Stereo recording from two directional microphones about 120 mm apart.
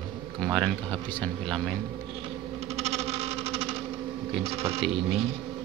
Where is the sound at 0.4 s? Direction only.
5° left (ahead or behind).